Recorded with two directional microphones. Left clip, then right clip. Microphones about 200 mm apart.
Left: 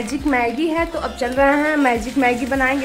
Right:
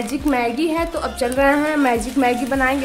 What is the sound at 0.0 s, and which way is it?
A woman's voice, centre (ahead or behind).